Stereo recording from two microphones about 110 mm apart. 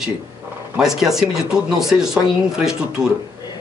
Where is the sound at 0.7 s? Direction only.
5° right (ahead or behind).